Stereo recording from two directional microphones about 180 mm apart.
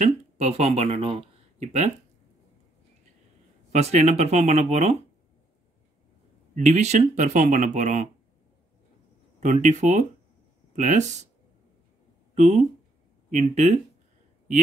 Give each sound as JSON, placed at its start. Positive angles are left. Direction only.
{"t": 0.0, "sound": "speech", "side_deg": -40}
{"t": 3.7, "sound": "speech", "side_deg": -40}
{"t": 6.5, "sound": "speech", "side_deg": -40}
{"t": 9.4, "sound": "speech", "side_deg": -40}
{"t": 12.4, "sound": "speech", "side_deg": -40}